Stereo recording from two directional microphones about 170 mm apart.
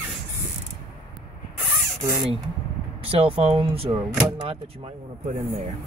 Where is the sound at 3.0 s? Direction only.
35° right (ahead or behind).